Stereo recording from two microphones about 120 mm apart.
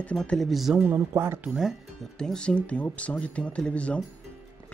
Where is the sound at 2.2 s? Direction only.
5° left (ahead or behind).